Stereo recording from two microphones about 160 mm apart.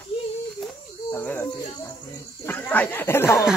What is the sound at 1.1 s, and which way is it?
Snake, 15° left (ahead or behind).